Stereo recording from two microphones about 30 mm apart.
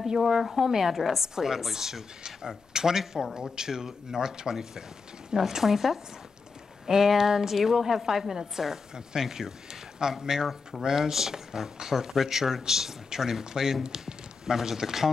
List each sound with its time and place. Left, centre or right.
0.2 s speech: centre; by 14.1 s right
14.4 s speech: centre